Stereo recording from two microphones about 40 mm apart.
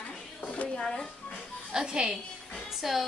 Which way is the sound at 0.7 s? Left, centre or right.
Centre.